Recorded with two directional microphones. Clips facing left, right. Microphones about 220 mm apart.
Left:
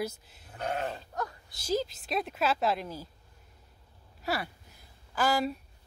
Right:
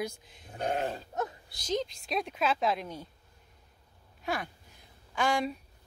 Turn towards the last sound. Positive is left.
turn(degrees=0)  # may be behind; listen again after turning